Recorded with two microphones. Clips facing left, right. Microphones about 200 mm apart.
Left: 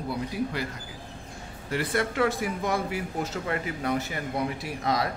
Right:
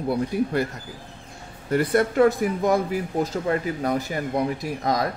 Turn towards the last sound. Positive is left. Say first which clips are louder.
# right 4 dB
turn(degrees=-45)  # may be behind; listen again after turning